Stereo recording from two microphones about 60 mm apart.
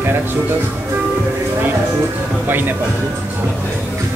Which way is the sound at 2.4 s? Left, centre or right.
Right.